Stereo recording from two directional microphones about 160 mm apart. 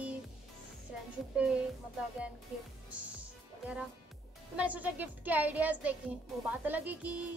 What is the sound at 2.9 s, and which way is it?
Music, 10° right (ahead or behind).